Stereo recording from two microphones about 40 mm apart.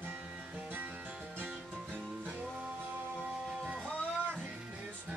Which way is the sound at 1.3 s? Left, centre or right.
Right.